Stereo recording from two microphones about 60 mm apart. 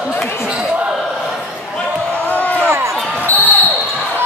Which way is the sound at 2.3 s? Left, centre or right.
Left.